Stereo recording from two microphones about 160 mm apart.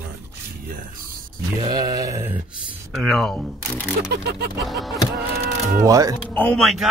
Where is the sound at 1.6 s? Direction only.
20° right (ahead or behind).